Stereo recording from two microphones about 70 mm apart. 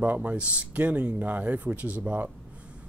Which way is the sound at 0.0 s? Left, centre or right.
Right.